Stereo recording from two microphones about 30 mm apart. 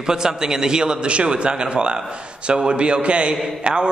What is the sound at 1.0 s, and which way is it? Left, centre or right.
A man's voice, right.